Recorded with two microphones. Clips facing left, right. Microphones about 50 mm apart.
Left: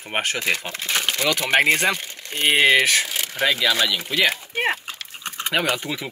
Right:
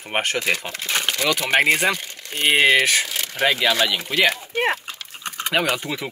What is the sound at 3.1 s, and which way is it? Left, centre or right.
Speech, centre.